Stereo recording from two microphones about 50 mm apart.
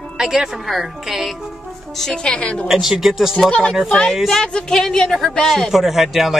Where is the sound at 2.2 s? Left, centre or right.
Left.